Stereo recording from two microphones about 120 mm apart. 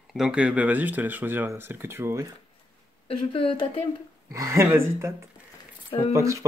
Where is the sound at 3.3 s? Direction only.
45° left (ahead or behind).